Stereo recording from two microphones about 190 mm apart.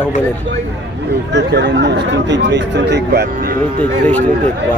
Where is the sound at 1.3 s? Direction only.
65° right (ahead or behind).